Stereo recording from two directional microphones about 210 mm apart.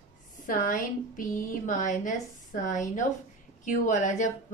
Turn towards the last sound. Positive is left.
turn(degrees=35)  # may be behind; listen again after turning